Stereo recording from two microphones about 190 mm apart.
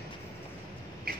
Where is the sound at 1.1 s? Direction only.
50° right (ahead or behind).